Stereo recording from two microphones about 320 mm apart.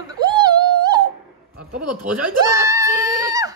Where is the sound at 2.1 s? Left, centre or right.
Centre.